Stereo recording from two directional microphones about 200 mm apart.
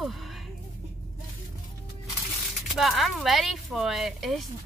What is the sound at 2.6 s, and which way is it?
A woman's voice, centre (ahead or behind).